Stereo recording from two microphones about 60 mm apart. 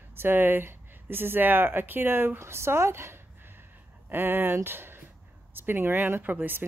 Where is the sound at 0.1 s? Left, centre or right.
Right.